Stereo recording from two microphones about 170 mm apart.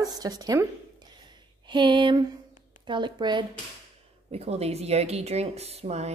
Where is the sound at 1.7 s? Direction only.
30° right (ahead or behind).